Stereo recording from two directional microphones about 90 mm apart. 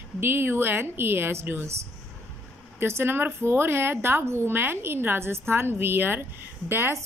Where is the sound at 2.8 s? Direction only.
30° right (ahead or behind).